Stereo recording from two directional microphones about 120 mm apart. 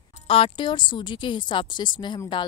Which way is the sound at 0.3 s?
45° left (ahead or behind).